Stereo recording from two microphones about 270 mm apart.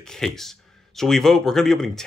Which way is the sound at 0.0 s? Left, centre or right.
Centre.